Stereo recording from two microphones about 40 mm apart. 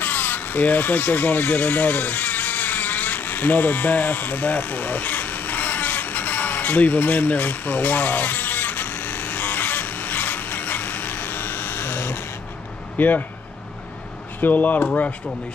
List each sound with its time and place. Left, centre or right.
0.0 s crow: left
12.9 s speech: left
14.4 s speech: left